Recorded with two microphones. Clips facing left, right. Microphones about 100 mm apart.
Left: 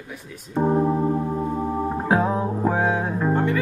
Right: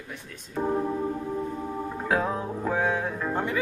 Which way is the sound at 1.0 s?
55° left (ahead or behind).